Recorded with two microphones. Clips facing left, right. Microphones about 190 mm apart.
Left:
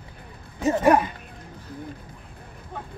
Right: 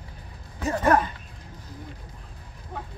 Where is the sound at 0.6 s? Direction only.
20° left (ahead or behind).